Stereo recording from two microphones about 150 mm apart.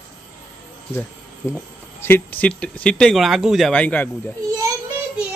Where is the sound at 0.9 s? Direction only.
15° left (ahead or behind).